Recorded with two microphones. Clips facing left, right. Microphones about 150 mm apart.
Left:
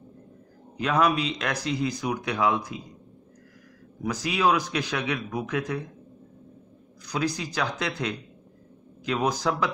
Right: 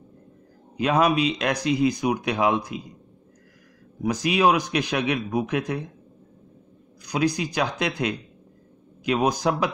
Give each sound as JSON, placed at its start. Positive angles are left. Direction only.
{"t": 0.7, "sound": "speech", "side_deg": -15}
{"t": 4.0, "sound": "speech", "side_deg": -15}
{"t": 7.1, "sound": "speech", "side_deg": -15}